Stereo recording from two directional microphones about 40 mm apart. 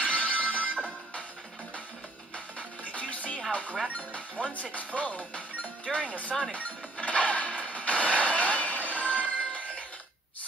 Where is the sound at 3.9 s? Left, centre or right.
Left.